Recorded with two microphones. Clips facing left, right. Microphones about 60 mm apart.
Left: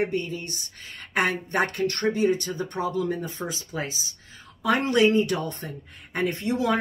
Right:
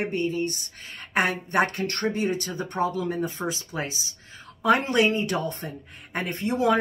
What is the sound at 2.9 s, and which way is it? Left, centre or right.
Speech, right.